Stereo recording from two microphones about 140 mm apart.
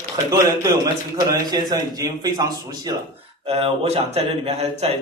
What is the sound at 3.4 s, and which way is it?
Speech, 45° right (ahead or behind).